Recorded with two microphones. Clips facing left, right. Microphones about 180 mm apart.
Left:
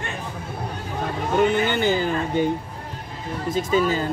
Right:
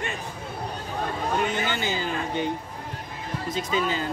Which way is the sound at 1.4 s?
55° left (ahead or behind).